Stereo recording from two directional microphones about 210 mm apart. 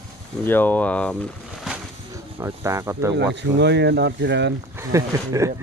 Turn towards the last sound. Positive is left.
turn(degrees=-15)  # may be behind; listen again after turning